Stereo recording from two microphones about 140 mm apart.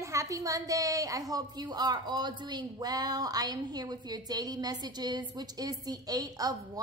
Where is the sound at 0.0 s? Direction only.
20° right (ahead or behind).